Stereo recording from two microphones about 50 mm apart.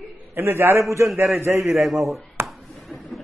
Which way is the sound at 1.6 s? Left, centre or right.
Centre.